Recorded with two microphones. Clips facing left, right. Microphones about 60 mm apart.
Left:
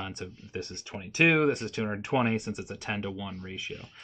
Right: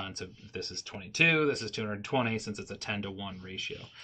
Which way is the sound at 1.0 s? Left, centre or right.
Centre.